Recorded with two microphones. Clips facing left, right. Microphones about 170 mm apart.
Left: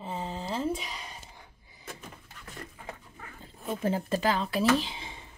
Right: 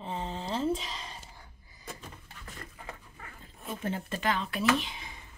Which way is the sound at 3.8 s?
35° left (ahead or behind).